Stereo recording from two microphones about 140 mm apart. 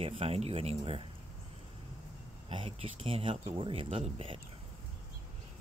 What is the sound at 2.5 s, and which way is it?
Speech, 40° right (ahead or behind).